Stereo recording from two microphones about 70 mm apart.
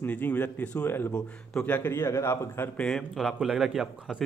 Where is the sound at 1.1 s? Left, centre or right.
Centre.